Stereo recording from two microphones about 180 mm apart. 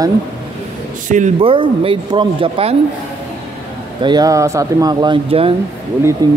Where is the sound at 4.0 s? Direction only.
25° right (ahead or behind).